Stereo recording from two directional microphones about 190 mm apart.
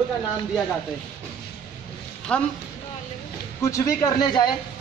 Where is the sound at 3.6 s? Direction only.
15° left (ahead or behind).